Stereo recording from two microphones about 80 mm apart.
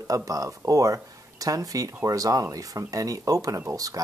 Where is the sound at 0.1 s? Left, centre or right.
Right.